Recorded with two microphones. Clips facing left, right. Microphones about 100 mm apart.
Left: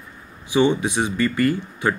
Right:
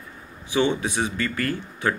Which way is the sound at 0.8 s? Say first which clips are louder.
Left 4 dB; 15° left (ahead or behind).